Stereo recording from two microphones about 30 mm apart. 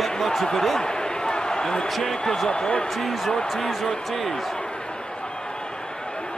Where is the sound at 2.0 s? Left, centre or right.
Centre.